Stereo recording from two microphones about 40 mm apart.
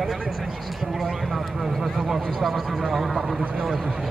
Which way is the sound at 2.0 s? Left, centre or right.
Centre.